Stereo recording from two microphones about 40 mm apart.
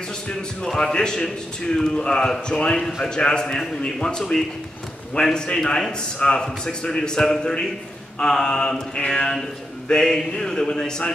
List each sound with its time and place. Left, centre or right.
0.7 s a man's voice: centre